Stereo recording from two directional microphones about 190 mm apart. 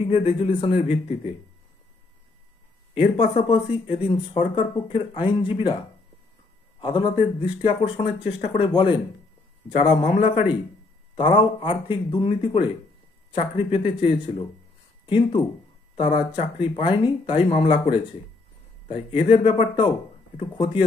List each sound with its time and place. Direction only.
0.0 s speech: 30° left (ahead or behind)
2.9 s speech: 35° left (ahead or behind)
6.8 s speech: 25° left (ahead or behind)
9.7 s a man's voice: 35° left (ahead or behind)